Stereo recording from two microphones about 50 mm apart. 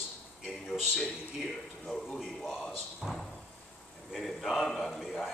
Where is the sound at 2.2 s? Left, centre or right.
Centre.